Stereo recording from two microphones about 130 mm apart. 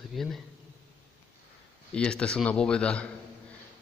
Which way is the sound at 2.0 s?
5° left (ahead or behind).